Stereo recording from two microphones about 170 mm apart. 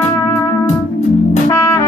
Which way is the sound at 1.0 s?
45° left (ahead or behind).